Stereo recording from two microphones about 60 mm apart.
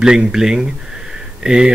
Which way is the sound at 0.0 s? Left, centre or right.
Centre.